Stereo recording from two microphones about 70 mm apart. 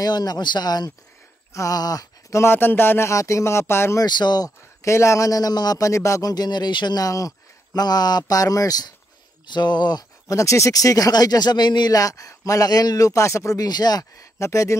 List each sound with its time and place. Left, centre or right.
0.0 s speech: left
1.5 s speech: left
1.8 s speech: left
2.4 s a man's voice: left
3.1 s speech: left
4.0 s speech: left
4.8 s speech: left
5.8 s speech: left
6.3 s speech: left
7.1 s speech: left
9.5 s speech: left
10.3 s speech: left
13.6 s speech: left
14.1 s speech: left